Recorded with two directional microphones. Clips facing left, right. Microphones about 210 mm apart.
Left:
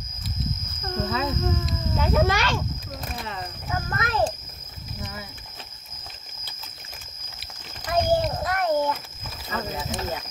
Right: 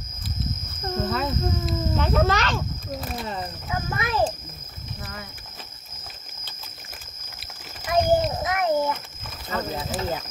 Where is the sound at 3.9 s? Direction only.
10° right (ahead or behind).